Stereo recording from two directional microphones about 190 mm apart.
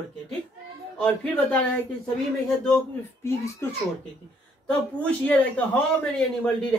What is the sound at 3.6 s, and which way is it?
Speech, 15° left (ahead or behind).